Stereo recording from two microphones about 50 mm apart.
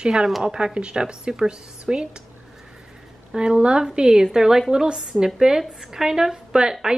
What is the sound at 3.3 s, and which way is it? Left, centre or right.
Speech, centre.